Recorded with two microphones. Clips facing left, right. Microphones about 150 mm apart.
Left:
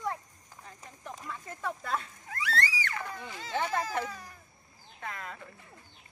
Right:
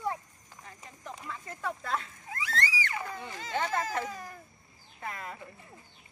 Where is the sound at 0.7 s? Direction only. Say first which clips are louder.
Even; centre (ahead or behind).